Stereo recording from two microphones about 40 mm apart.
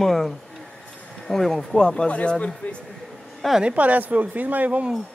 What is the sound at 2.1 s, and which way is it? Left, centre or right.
Speech, left.